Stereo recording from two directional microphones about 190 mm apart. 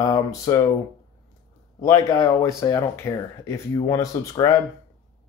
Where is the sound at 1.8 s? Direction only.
20° left (ahead or behind).